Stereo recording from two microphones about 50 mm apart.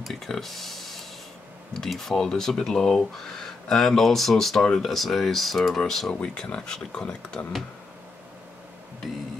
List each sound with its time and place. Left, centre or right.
0.1 s speech: centre